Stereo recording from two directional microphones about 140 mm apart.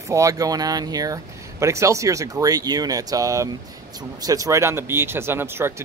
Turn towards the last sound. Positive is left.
turn(degrees=-15)  # may be behind; listen again after turning